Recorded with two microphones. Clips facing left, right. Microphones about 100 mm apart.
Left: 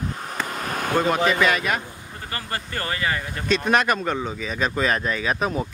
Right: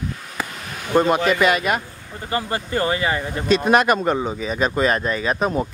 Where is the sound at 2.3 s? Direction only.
20° right (ahead or behind).